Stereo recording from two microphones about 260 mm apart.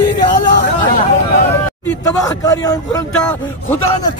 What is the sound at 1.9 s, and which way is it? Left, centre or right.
Speech, centre.